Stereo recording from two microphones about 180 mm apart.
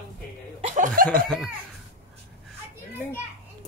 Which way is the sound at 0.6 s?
45° right (ahead or behind).